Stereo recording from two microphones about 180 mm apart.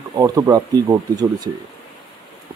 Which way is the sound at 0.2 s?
20° right (ahead or behind).